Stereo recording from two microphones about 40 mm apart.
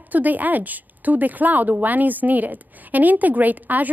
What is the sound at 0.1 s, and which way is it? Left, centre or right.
A woman's voice, right.